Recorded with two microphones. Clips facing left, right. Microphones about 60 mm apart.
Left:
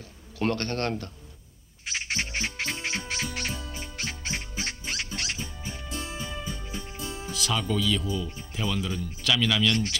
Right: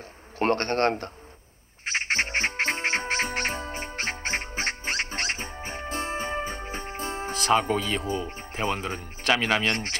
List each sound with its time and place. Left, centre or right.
0.4 s a man's voice: right
1.9 s music: right